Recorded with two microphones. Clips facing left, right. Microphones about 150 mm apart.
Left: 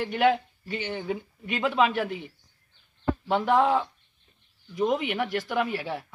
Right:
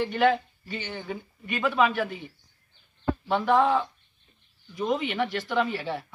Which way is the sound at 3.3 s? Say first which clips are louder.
Even; 15° left (ahead or behind).